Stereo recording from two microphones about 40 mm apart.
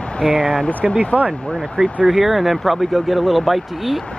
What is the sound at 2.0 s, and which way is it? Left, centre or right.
Speech, centre.